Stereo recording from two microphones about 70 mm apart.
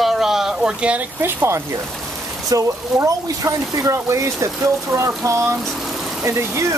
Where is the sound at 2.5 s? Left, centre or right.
Right.